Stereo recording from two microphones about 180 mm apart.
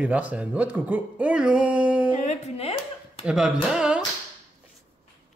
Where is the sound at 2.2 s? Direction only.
40° left (ahead or behind).